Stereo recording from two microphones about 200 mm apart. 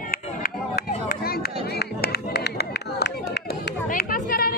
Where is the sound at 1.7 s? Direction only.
55° left (ahead or behind).